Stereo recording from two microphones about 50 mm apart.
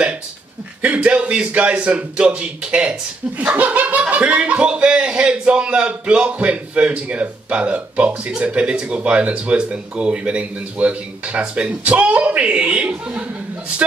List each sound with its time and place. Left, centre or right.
0.8 s a man's voice: right